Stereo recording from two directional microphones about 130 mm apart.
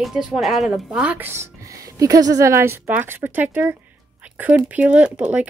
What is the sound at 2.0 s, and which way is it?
A woman's voice, 25° right (ahead or behind).